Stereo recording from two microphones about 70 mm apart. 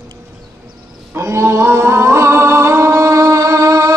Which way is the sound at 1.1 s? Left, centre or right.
Right.